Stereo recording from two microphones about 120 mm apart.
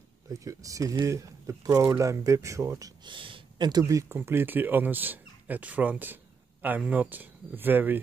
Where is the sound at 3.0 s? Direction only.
45° right (ahead or behind); by 7.9 s 15° right (ahead or behind).